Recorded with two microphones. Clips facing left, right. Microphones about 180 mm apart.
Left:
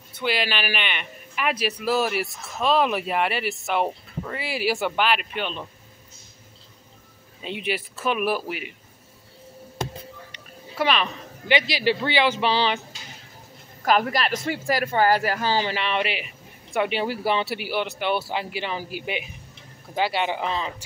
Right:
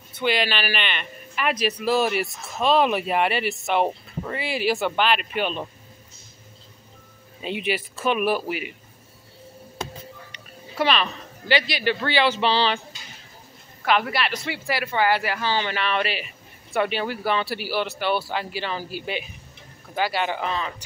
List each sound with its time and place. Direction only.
0.2 s a man's voice: 5° left (ahead or behind)
7.4 s a man's voice: 5° right (ahead or behind)
10.8 s speech: 10° left (ahead or behind)
12.0 s speech: 15° left (ahead or behind)
13.8 s speech: 40° left (ahead or behind)
15.7 s speech: 20° left (ahead or behind)